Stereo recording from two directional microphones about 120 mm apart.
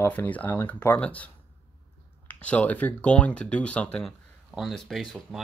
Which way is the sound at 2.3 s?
10° left (ahead or behind).